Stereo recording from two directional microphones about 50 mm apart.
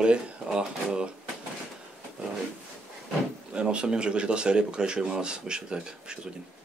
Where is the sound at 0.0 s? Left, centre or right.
Centre.